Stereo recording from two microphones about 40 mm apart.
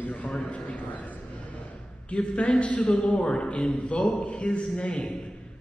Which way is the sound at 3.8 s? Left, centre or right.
Left.